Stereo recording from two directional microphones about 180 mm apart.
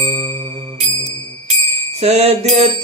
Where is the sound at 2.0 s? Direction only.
35° right (ahead or behind).